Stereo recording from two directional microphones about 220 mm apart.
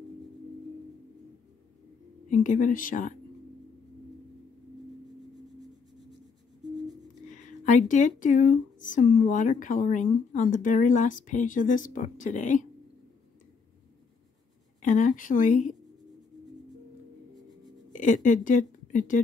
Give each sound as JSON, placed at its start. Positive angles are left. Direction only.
{"t": 2.2, "sound": "speech", "side_deg": 35}
{"t": 7.6, "sound": "speech", "side_deg": 35}
{"t": 14.8, "sound": "speech", "side_deg": 35}
{"t": 17.9, "sound": "a woman's voice", "side_deg": 35}